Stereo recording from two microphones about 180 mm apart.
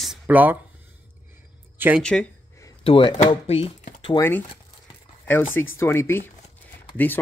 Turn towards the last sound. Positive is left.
turn(degrees=10)  # may be behind; listen again after turning